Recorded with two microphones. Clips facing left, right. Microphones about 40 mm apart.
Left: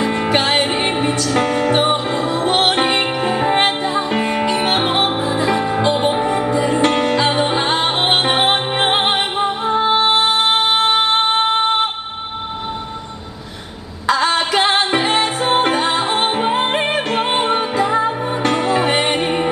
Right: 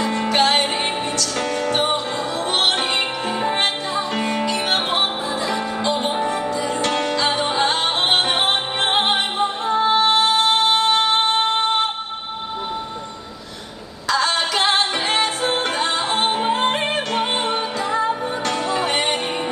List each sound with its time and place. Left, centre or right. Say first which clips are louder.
0.0 s music: left 2 dB; left
14.0 s music: left 4 dB; centre